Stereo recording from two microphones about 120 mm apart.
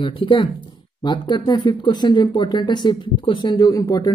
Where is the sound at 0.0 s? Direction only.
50° left (ahead or behind).